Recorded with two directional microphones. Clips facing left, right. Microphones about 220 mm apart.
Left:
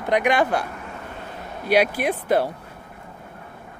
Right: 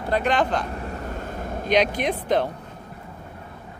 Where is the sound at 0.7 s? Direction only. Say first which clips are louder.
Right 4 dB; 40° right (ahead or behind).